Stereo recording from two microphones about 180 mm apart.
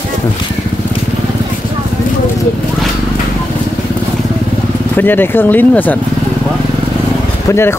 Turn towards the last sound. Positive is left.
turn(degrees=15)  # may be behind; listen again after turning